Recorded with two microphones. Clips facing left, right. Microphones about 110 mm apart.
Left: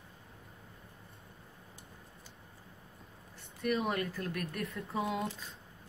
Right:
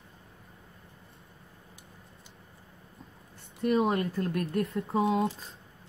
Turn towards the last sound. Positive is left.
turn(degrees=-30)  # may be behind; listen again after turning